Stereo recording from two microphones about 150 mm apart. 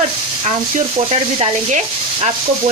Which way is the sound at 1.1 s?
40° right (ahead or behind).